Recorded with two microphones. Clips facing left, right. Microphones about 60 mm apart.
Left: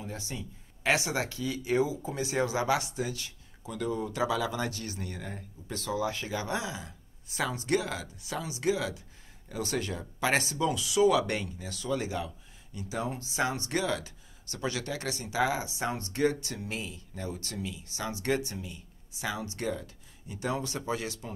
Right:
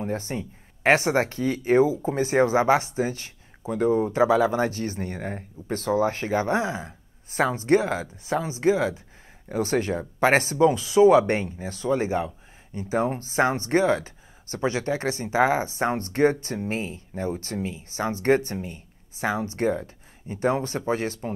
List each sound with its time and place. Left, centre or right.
0.0 s speech: right